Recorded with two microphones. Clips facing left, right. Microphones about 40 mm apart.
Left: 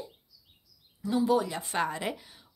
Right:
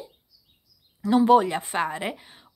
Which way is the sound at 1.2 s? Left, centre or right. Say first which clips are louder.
Right 8 dB; right.